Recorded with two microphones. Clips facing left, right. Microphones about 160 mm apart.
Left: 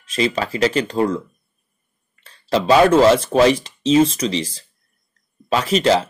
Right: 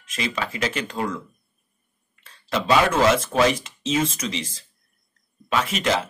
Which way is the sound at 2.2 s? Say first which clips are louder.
Left 6 dB; 35° left (ahead or behind).